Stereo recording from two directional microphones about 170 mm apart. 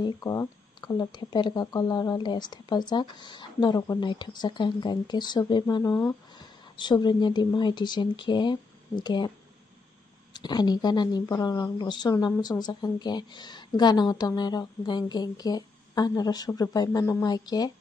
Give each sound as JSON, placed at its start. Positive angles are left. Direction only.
{"t": 0.0, "sound": "speech", "side_deg": 20}
{"t": 10.3, "sound": "speech", "side_deg": 25}